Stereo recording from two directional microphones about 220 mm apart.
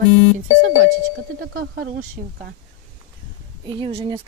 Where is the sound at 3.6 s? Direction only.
20° right (ahead or behind).